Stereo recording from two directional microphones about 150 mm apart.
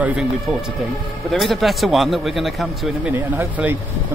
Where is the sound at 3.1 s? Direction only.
15° right (ahead or behind).